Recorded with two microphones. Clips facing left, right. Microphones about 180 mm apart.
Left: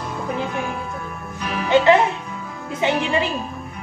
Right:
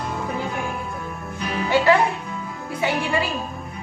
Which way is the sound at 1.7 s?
20° left (ahead or behind).